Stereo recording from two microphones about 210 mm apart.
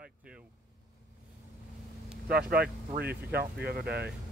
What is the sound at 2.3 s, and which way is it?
Speech, 45° right (ahead or behind).